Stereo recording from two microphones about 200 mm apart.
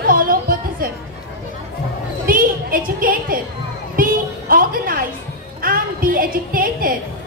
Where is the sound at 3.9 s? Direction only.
45° right (ahead or behind).